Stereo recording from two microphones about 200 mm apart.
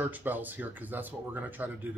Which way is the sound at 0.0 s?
10° right (ahead or behind).